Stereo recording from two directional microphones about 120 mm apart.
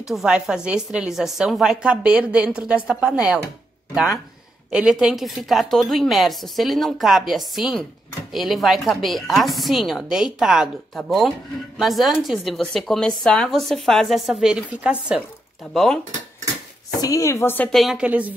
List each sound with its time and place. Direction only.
0.1 s a woman's voice: 5° right (ahead or behind)
4.6 s a woman's voice: 5° right (ahead or behind)
15.7 s a woman's voice: centre (ahead or behind)
17.0 s speech: 25° left (ahead or behind)
17.6 s a woman's voice: centre (ahead or behind)